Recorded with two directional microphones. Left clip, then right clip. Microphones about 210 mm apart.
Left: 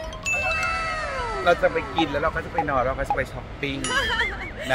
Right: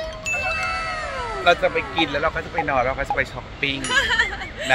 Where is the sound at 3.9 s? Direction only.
20° left (ahead or behind).